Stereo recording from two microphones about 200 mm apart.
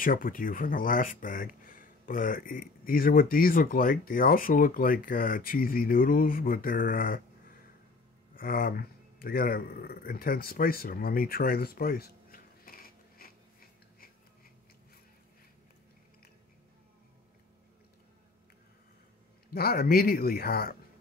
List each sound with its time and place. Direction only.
0.0 s speech: 45° left (ahead or behind)
8.4 s a sound: 45° left (ahead or behind)
19.5 s speech: 50° left (ahead or behind)